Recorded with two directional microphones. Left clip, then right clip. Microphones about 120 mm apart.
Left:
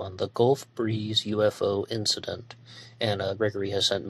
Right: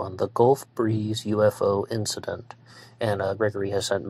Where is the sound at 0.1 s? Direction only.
5° right (ahead or behind).